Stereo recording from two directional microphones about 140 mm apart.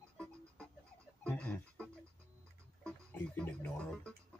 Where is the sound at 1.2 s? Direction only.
10° left (ahead or behind).